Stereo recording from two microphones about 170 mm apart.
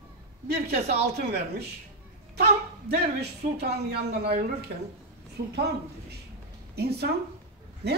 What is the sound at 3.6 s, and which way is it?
Speech, 70° right (ahead or behind).